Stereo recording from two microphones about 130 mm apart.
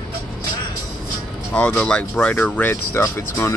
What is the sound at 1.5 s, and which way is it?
Speech, 10° left (ahead or behind).